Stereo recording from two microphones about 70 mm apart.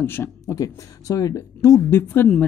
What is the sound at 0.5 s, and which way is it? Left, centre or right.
Speech, left.